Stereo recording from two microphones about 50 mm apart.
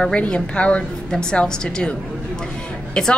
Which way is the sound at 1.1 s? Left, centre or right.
Centre.